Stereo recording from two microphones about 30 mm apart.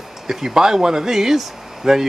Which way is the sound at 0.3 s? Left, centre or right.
Centre.